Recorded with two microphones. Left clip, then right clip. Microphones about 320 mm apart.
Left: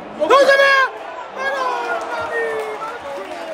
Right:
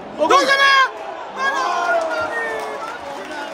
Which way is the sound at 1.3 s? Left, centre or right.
Centre.